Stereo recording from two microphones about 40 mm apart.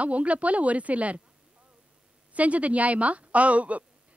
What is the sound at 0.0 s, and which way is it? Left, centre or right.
A man's voice, right.